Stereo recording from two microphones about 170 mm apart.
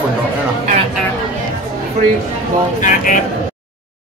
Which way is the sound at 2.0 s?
40° right (ahead or behind).